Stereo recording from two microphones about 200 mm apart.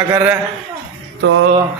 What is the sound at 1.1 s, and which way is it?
Music, 75° right (ahead or behind).